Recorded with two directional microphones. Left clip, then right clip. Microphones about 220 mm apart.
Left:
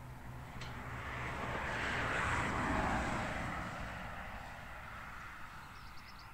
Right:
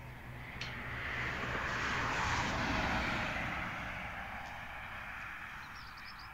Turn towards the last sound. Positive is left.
turn(degrees=25)  # may be behind; listen again after turning